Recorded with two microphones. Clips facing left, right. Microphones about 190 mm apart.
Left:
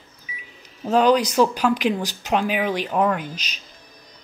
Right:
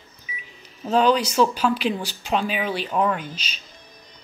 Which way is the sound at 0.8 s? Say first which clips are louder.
Left 2 dB; 10° left (ahead or behind).